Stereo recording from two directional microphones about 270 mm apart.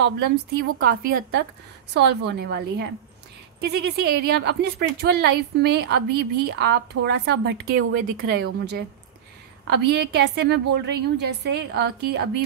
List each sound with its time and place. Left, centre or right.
0.6 s speech: right